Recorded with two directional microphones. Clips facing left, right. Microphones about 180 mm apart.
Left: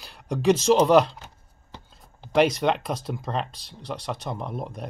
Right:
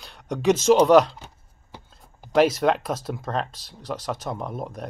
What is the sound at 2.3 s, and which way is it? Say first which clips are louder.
Speech: right 2 dB; centre (ahead or behind).